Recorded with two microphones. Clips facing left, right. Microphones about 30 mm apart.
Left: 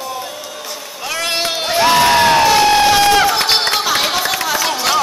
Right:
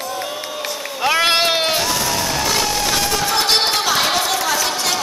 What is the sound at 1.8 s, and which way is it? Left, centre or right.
Crowd, left.